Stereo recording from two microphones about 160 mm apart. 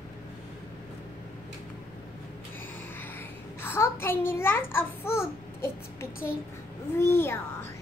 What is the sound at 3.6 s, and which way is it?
A child's voice, 15° left (ahead or behind).